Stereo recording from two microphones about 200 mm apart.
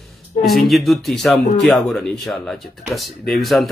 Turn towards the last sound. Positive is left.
turn(degrees=0)  # may be behind; listen again after turning